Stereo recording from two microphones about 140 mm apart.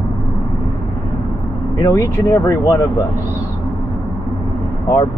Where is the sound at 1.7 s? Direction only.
25° left (ahead or behind).